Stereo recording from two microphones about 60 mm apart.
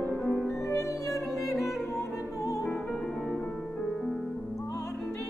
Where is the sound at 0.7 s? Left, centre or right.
Left.